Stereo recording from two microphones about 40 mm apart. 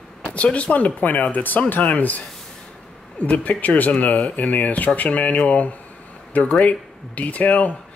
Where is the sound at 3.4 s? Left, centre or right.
Left.